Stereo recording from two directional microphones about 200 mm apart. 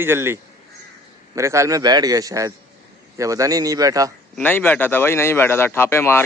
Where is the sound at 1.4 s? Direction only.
15° right (ahead or behind).